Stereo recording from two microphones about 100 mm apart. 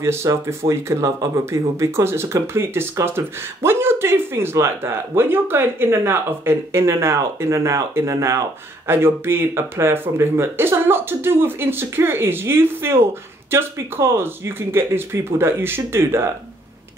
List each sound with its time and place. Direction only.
0.0 s speech: 30° right (ahead or behind)